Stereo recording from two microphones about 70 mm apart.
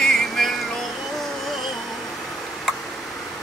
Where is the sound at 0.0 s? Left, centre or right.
Centre.